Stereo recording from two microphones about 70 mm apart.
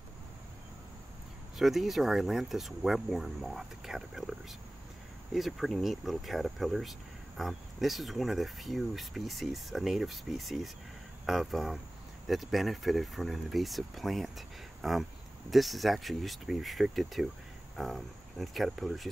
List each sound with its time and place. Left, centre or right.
1.6 s speech: centre